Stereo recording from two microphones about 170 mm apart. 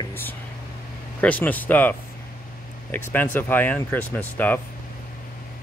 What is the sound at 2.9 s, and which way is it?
Speech, 10° left (ahead or behind).